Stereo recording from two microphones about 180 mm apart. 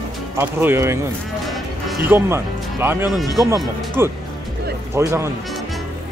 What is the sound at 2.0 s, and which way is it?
Speech, 15° right (ahead or behind).